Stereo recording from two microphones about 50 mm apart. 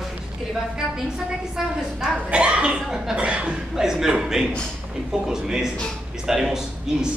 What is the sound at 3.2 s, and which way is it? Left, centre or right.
Speech, right.